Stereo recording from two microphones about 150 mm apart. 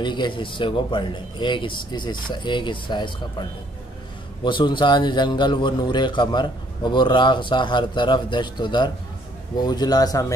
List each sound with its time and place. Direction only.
0.0 s a man's voice: 30° left (ahead or behind)
4.5 s a man's voice: 30° left (ahead or behind)